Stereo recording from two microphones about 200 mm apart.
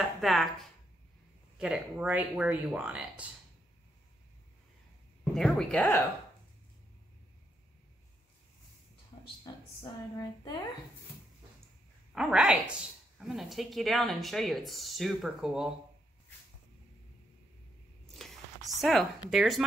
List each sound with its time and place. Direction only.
0.0 s speech: centre (ahead or behind)
5.2 s a woman's voice: centre (ahead or behind)
9.5 s a sound: 20° left (ahead or behind)
10.1 s a woman's voice: 20° left (ahead or behind)
12.1 s a woman's voice: 5° right (ahead or behind)
18.0 s zipper: centre (ahead or behind)